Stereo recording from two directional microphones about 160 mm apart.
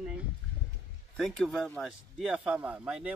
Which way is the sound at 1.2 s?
Centre (ahead or behind).